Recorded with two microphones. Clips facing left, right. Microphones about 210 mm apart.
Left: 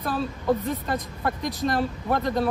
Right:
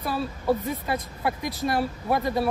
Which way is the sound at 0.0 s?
10° right (ahead or behind).